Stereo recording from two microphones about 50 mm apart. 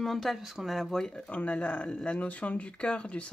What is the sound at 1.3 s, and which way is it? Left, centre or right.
Speech, left.